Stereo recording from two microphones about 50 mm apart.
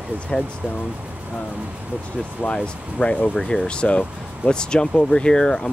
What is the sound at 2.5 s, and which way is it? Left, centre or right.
Speech, left.